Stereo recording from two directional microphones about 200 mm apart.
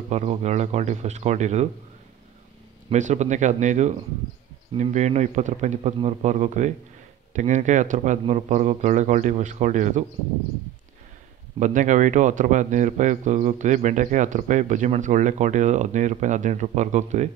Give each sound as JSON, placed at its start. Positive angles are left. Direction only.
{"t": 0.1, "sound": "speech", "side_deg": -35}
{"t": 2.9, "sound": "speech", "side_deg": -35}
{"t": 11.6, "sound": "speech", "side_deg": -40}